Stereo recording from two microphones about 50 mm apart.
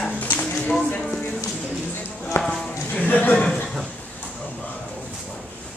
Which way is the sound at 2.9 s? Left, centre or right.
Left.